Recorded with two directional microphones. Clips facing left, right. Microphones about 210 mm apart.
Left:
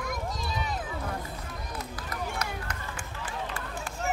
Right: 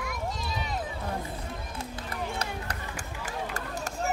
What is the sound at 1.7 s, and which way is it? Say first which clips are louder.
Run: even; 30° right (ahead or behind).